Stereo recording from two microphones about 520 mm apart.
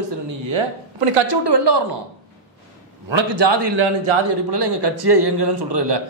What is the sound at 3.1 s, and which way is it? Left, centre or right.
A man's voice, right.